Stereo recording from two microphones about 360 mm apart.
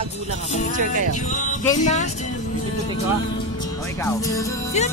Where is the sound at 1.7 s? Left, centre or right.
Centre.